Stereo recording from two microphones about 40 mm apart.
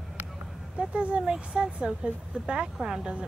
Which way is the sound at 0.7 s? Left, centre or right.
Right.